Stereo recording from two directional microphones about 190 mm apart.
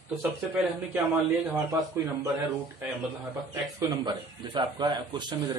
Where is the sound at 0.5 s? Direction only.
5° right (ahead or behind).